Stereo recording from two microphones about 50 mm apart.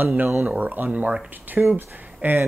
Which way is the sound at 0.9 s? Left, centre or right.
Right.